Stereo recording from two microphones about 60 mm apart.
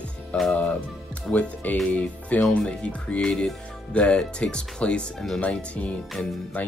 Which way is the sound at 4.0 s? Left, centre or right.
Centre.